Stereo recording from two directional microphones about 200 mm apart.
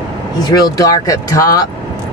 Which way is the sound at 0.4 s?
20° left (ahead or behind).